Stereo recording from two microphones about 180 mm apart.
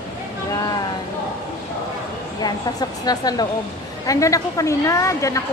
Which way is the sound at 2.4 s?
20° left (ahead or behind).